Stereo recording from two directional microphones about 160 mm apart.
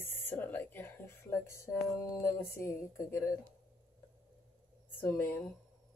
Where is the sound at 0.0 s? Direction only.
15° left (ahead or behind).